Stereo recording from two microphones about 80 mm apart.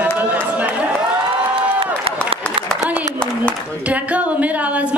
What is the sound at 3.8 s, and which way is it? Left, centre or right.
A man's voice, centre.